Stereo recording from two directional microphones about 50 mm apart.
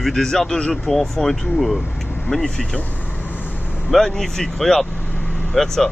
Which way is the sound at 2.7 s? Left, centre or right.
Left.